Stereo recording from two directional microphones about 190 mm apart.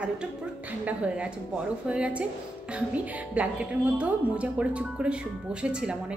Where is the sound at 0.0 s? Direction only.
5° right (ahead or behind).